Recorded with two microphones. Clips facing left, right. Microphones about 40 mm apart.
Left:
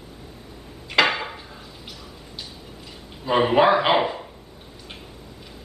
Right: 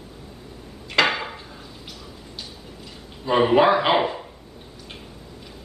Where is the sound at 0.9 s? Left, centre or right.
Centre.